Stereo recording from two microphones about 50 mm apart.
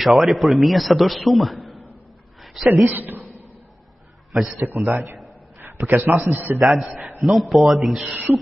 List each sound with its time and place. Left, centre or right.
0.0 s a man's voice: centre
2.9 s a man's voice: right
4.3 s a man's voice: right
4.6 s a man's voice: right
5.6 s a sound: right
6.0 s a man's voice: right
7.2 s a man's voice: centre
8.0 s a man's voice: right